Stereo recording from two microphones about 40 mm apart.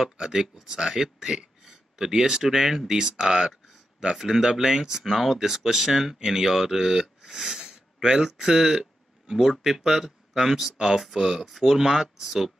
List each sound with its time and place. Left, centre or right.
0.2 s speech: centre